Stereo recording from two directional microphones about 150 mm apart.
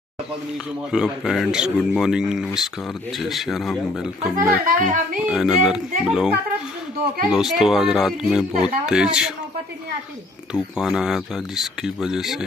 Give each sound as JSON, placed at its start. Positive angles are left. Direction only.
{"t": 0.9, "sound": "speech", "side_deg": 0}
{"t": 4.4, "sound": "speech", "side_deg": -65}
{"t": 5.3, "sound": "speech", "side_deg": 0}
{"t": 10.5, "sound": "speech", "side_deg": -5}